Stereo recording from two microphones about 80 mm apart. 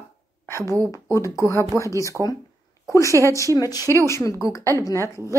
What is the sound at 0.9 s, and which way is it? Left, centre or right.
Speech, left.